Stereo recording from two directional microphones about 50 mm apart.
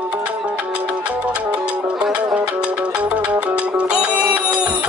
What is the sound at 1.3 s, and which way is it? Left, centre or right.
Music, right.